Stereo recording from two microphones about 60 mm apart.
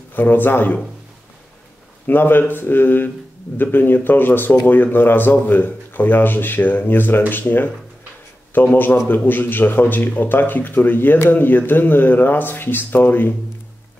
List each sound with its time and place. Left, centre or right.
0.1 s speech: left
2.0 s speech: left